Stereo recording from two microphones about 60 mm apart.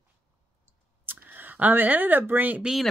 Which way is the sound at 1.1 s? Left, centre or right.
Right.